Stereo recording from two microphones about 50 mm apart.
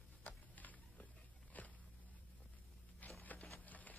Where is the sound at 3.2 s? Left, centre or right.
Left.